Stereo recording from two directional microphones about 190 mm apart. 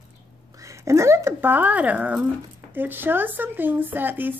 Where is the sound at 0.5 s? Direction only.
15° right (ahead or behind).